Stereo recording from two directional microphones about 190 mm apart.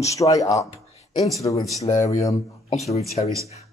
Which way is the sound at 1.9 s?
40° left (ahead or behind).